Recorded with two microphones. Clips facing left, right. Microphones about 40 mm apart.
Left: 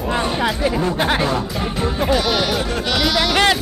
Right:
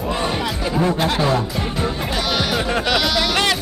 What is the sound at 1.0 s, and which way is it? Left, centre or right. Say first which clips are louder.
Speech: left 1 dB; left.